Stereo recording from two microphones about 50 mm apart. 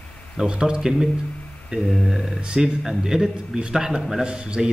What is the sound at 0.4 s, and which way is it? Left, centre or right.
A man's voice, centre.